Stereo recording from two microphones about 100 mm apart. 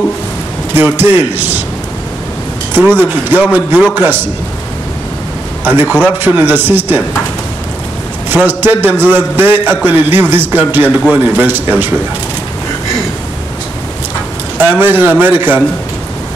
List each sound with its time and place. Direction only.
0.7 s a man's voice: 20° right (ahead or behind)
2.7 s a man's voice: 20° right (ahead or behind)
5.6 s a man's voice: 20° right (ahead or behind)
8.3 s a man's voice: 20° right (ahead or behind)
14.6 s a man's voice: 20° right (ahead or behind)